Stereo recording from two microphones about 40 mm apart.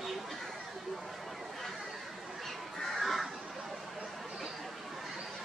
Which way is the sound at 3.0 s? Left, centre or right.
Centre.